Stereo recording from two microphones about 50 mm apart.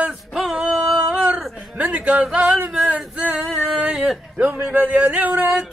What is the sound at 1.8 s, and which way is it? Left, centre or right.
Speech, right.